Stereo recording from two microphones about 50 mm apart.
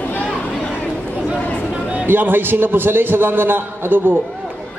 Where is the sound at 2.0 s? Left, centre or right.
Right.